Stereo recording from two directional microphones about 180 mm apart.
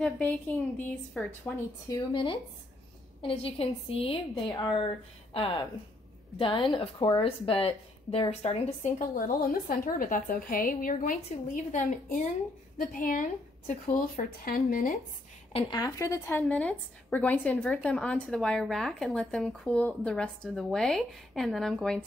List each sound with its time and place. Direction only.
0.0 s a woman's voice: 5° left (ahead or behind)
1.9 s a woman's voice: 30° left (ahead or behind)
4.5 s a woman's voice: 20° left (ahead or behind); by 9.0 s 35° left (ahead or behind)
9.7 s a woman's voice: 50° left (ahead or behind)
15.5 s a woman's voice: 25° left (ahead or behind); by 22.0 s 5° left (ahead or behind)